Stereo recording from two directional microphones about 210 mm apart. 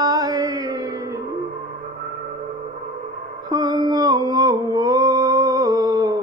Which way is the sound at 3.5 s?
20° right (ahead or behind).